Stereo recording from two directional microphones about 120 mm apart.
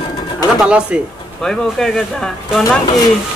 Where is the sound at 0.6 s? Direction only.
10° right (ahead or behind).